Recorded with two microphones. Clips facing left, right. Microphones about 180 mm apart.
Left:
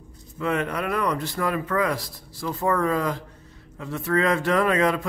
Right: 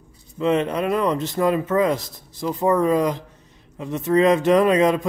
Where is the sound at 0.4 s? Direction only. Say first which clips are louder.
Right 5 dB; 20° right (ahead or behind).